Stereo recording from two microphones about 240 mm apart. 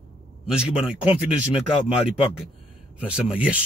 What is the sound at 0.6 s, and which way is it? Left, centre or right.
Speech, centre.